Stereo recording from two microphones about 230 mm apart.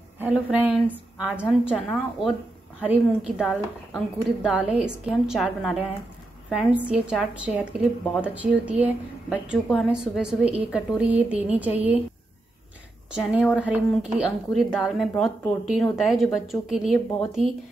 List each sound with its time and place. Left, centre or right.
0.2 s speech: centre
13.1 s speech: centre